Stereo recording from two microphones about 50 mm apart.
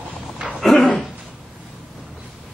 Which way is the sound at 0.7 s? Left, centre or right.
Centre.